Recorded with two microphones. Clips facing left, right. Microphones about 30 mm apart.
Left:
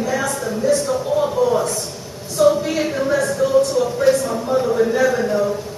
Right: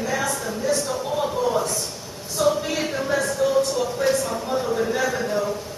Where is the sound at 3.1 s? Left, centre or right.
Centre.